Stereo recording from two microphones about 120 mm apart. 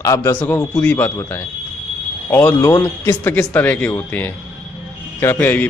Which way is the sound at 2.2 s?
15° left (ahead or behind).